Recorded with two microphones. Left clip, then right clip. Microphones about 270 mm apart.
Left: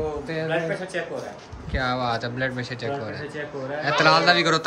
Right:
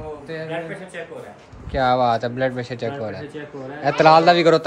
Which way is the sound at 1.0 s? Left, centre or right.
Left.